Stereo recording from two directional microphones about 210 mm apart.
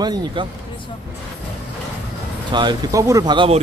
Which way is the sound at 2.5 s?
20° right (ahead or behind).